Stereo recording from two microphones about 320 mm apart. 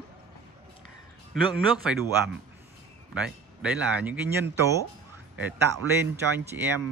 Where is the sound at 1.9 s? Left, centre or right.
Centre.